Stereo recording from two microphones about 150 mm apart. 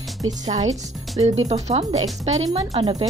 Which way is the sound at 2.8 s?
25° right (ahead or behind).